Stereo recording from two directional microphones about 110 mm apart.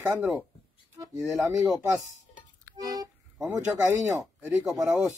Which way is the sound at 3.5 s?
20° right (ahead or behind).